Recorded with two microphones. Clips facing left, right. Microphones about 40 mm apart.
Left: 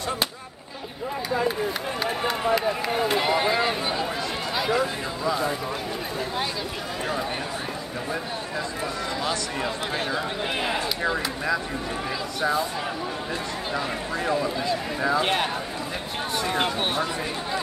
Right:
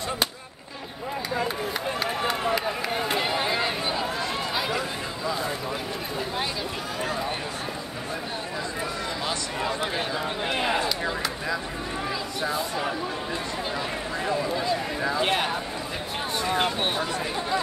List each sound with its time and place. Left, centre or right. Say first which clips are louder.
2.0 s speech: left 1 dB; centre
4.6 s run: left 6 dB; centre
10.4 s speech: right 4 dB; centre
15.1 s speech: even; centre
16.5 s speech: even; centre